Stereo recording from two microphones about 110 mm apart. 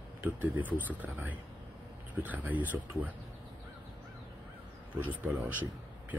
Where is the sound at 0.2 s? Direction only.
15° right (ahead or behind).